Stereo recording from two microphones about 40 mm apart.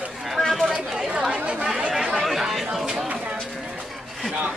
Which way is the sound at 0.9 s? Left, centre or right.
Right.